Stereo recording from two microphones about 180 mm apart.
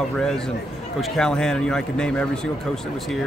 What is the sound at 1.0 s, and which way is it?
A man's voice, 5° left (ahead or behind).